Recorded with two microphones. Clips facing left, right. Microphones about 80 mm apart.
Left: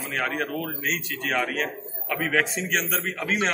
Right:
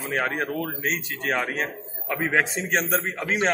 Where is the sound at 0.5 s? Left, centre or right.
Right.